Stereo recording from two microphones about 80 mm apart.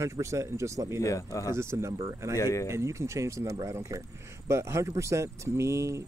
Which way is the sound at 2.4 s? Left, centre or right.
Left.